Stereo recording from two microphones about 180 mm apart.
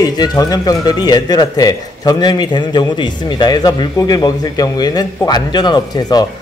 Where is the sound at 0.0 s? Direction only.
20° left (ahead or behind).